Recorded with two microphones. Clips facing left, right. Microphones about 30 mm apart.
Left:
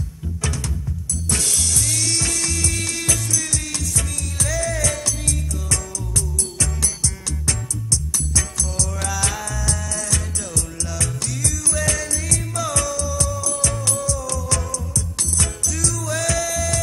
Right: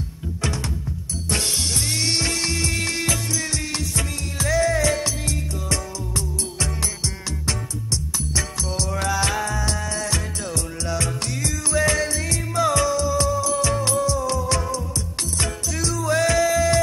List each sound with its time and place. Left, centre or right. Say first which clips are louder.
1.3 s music: even; right